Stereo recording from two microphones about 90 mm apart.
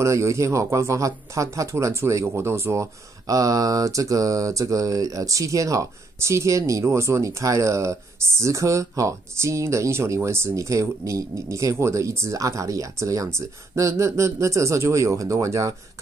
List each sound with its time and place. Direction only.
0.0 s a man's voice: 35° right (ahead or behind)